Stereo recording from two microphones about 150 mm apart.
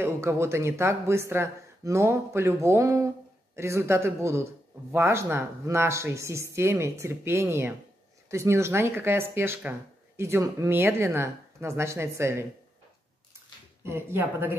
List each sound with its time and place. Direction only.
0.0 s speech: 15° right (ahead or behind)
13.8 s speech: 15° right (ahead or behind)